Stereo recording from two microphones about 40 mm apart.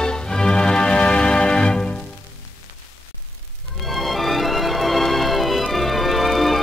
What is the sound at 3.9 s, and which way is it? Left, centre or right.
Music, centre.